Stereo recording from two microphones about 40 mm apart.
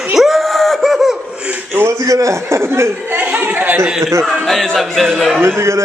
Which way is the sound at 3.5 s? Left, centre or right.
Right.